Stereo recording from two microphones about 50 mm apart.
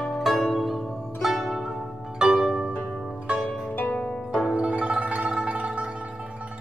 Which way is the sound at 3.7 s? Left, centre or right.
Left.